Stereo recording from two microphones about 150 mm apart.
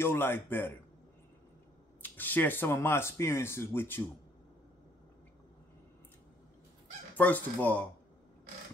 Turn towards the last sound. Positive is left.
turn(degrees=10)  # may be behind; listen again after turning